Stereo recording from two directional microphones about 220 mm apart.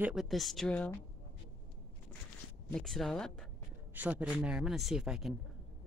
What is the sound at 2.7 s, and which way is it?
Speech, centre (ahead or behind).